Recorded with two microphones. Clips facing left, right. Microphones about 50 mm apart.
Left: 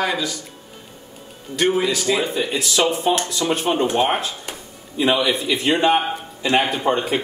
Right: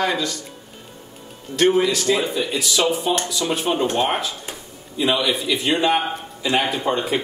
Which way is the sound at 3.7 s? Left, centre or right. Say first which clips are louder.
Left 1 dB; centre.